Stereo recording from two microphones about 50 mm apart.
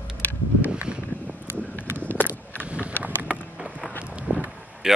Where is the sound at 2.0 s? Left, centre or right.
Left.